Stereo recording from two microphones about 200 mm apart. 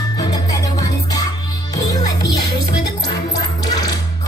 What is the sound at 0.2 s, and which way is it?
Music, 15° left (ahead or behind).